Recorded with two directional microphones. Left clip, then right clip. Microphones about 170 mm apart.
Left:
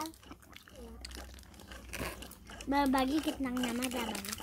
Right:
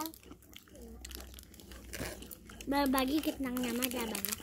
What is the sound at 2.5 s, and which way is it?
A child's voice, 40° right (ahead or behind).